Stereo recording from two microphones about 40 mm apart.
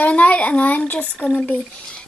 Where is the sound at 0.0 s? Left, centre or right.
Left.